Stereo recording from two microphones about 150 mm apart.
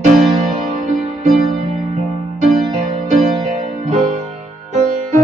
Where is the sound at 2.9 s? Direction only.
60° right (ahead or behind).